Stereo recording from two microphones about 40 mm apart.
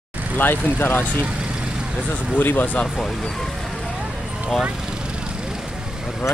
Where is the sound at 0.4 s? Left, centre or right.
Left.